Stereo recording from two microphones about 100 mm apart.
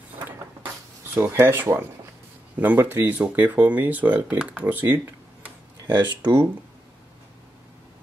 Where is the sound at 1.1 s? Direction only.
20° right (ahead or behind).